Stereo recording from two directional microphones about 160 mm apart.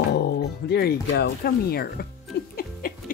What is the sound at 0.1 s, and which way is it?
Speech, 90° left.